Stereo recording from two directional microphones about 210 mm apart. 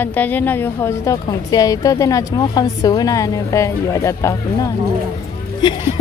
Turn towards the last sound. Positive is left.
turn(degrees=20)  # may be behind; listen again after turning